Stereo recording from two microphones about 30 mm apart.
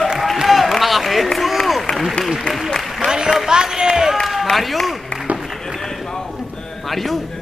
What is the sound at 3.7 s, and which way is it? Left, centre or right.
Speech, centre.